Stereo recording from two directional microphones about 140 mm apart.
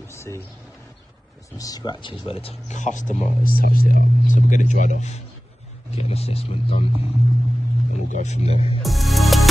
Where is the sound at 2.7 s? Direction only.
60° left (ahead or behind); by 3.9 s 90° left.